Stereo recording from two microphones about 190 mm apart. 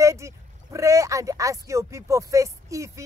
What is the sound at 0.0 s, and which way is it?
Speech, 15° right (ahead or behind).